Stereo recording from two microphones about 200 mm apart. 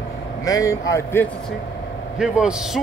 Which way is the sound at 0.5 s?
15° left (ahead or behind).